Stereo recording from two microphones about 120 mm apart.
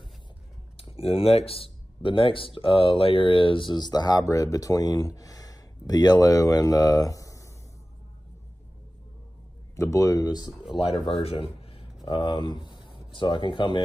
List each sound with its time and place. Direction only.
0.7 s speech: 50° left (ahead or behind); by 7.5 s 25° left (ahead or behind)
9.8 s speech: 25° left (ahead or behind)
10.7 s speech: 5° right (ahead or behind)
11.1 s a sound: 55° left (ahead or behind)
12.1 s speech: 40° left (ahead or behind)